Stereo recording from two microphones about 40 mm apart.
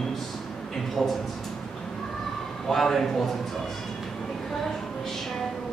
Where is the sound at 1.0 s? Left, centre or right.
Centre.